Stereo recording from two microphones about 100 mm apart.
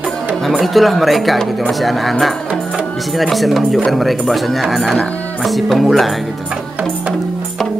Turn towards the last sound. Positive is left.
turn(degrees=0)  # may be behind; listen again after turning